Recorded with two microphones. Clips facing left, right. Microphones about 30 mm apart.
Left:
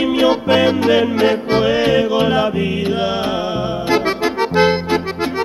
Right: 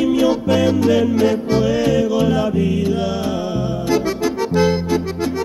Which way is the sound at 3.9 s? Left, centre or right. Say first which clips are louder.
Left 2 dB; left.